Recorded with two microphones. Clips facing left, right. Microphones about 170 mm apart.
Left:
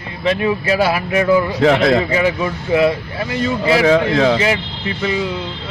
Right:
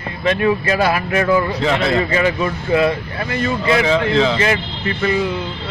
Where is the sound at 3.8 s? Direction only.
55° left (ahead or behind).